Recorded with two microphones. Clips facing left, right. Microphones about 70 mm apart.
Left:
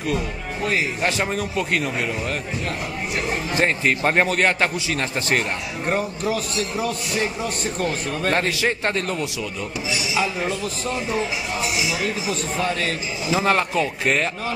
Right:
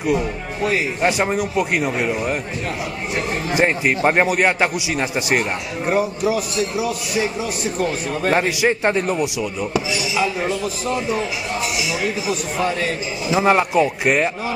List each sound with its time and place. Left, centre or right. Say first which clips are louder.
1.0 s a man's voice: right 4 dB; centre
3.5 s a man's voice: right 3 dB; centre
10.6 s a man's voice: right 3 dB; centre